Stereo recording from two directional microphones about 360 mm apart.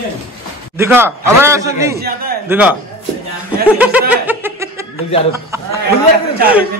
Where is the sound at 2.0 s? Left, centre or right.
Right.